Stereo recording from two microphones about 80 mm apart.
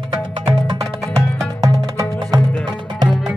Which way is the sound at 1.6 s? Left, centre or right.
Right.